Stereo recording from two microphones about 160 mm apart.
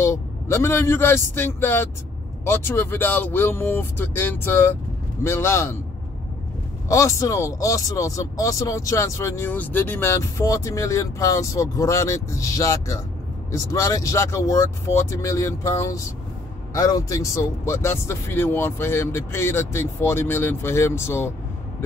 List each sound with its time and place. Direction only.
0.0 s speech: 15° left (ahead or behind)
6.9 s speech: 20° left (ahead or behind)